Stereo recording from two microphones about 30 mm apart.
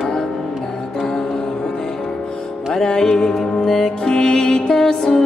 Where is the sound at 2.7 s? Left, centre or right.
Left.